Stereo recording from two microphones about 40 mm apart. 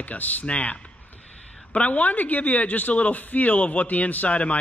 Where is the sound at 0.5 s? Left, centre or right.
Left.